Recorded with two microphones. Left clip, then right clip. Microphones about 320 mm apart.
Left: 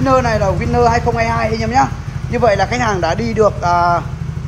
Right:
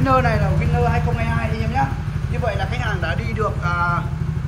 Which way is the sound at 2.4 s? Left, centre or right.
Left.